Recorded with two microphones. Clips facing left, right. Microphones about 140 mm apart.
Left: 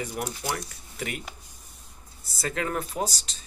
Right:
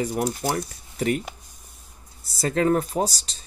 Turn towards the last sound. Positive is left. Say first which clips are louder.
# right 5 dB
turn(degrees=-35)  # may be behind; listen again after turning